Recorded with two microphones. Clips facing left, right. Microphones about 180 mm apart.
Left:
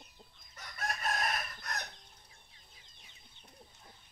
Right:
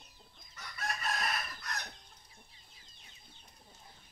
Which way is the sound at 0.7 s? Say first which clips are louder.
Left 1 dB; 50° left (ahead or behind).